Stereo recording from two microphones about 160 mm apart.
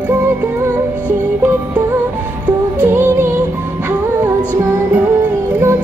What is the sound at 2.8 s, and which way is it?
Music, 15° right (ahead or behind).